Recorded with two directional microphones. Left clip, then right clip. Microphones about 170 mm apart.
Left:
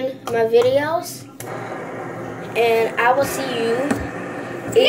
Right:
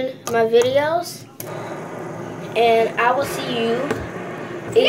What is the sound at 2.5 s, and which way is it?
Speech, 10° right (ahead or behind).